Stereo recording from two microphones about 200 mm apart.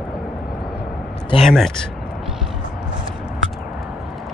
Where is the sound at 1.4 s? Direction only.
Centre (ahead or behind).